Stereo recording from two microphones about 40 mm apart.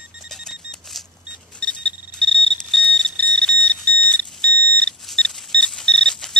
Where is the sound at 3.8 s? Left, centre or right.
Left.